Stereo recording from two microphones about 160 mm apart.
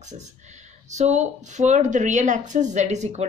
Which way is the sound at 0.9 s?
45° right (ahead or behind).